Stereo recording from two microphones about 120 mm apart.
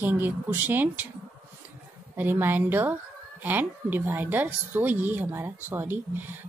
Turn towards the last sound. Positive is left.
turn(degrees=-15)  # may be behind; listen again after turning